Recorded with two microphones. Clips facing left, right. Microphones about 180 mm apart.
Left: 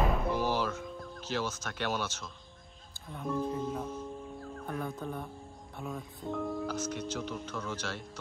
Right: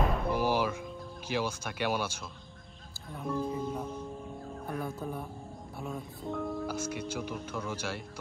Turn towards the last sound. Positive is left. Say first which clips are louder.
# right 2 dB
turn(degrees=-10)  # may be behind; listen again after turning